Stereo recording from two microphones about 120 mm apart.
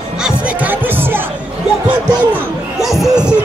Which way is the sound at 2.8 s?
Centre (ahead or behind).